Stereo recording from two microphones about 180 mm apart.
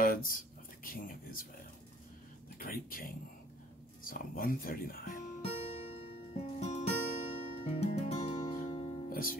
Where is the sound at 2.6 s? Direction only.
55° left (ahead or behind).